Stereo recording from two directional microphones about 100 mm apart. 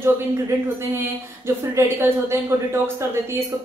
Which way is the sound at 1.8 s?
25° right (ahead or behind).